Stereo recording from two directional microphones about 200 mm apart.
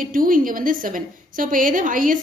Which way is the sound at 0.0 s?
45° right (ahead or behind).